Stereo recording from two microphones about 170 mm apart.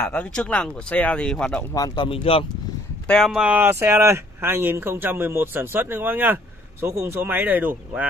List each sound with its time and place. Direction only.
0.1 s speech: 5° left (ahead or behind)
1.7 s speech: 20° left (ahead or behind)
2.0 s speech: 35° left (ahead or behind)
3.1 s speech: centre (ahead or behind)